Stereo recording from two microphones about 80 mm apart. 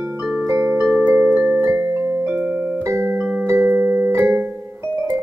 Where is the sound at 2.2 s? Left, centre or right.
Right.